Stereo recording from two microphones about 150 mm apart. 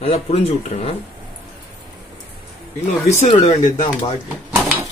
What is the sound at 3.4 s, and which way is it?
Speech, 55° left (ahead or behind).